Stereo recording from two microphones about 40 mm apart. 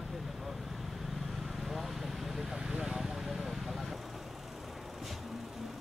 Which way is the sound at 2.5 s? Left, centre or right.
Centre.